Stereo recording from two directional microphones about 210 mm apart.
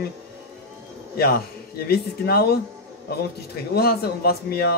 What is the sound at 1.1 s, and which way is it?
Speech, 45° left (ahead or behind).